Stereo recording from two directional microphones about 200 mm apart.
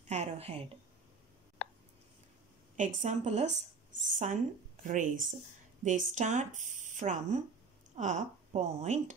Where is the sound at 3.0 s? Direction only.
35° right (ahead or behind).